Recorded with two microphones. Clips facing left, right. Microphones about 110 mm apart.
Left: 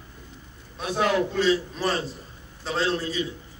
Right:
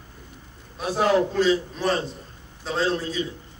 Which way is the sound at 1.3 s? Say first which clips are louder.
Right 2 dB; centre (ahead or behind).